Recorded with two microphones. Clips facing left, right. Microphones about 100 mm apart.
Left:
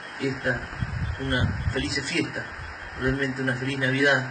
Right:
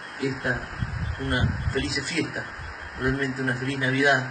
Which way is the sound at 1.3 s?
Centre (ahead or behind).